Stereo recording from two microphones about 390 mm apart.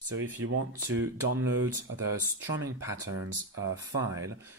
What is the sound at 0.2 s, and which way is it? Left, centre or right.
Speech, right.